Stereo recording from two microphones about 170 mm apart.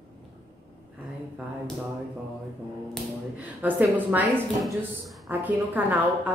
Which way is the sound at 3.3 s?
10° right (ahead or behind).